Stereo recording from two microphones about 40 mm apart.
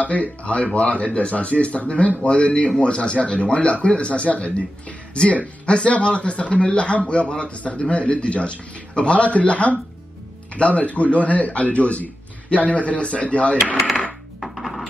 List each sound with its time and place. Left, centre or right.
0.0 s speech: left
14.4 s music: centre